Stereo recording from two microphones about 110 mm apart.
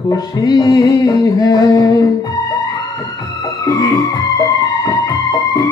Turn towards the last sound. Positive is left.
turn(degrees=30)  # may be behind; listen again after turning